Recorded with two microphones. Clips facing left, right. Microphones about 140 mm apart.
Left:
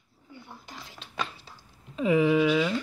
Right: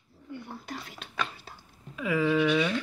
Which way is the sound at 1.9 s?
20° left (ahead or behind).